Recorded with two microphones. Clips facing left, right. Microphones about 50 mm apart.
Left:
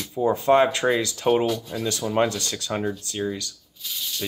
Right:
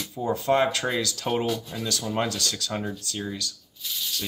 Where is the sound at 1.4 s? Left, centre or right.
Centre.